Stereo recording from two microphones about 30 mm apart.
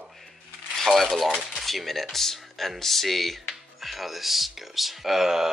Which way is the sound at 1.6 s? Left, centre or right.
Centre.